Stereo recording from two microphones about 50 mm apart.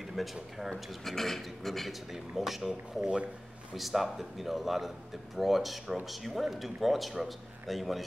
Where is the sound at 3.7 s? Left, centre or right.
Centre.